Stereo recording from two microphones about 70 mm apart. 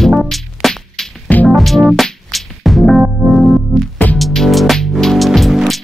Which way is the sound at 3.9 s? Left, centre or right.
Left.